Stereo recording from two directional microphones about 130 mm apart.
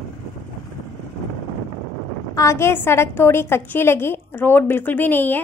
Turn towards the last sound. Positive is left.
turn(degrees=15)  # may be behind; listen again after turning